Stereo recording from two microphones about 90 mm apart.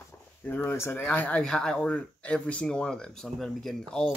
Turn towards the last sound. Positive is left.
turn(degrees=5)  # may be behind; listen again after turning